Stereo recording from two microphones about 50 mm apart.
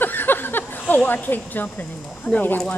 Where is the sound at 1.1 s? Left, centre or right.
Left.